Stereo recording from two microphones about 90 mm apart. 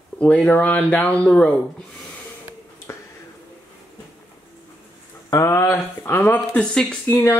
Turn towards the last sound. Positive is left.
turn(degrees=25)  # may be behind; listen again after turning